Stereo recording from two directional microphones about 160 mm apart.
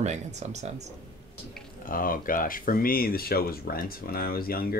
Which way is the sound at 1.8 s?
60° left (ahead or behind).